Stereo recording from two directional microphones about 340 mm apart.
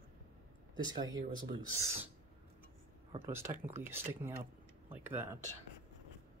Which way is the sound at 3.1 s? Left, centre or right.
Centre.